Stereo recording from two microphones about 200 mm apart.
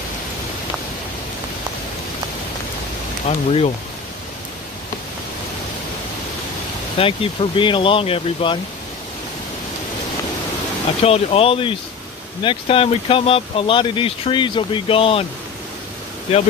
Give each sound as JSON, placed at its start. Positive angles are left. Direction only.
{"t": 3.3, "sound": "speech", "side_deg": 35}
{"t": 7.0, "sound": "speech", "side_deg": 25}
{"t": 11.0, "sound": "speech", "side_deg": 30}
{"t": 16.3, "sound": "speech", "side_deg": 30}